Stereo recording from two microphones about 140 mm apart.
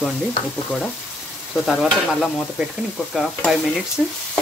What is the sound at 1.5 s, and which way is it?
Stir, centre (ahead or behind).